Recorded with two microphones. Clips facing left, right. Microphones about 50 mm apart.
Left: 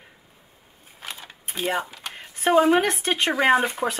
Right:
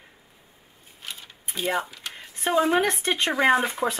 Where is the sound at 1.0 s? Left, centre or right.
Centre.